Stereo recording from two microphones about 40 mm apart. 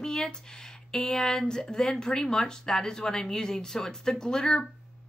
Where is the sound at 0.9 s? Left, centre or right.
Centre.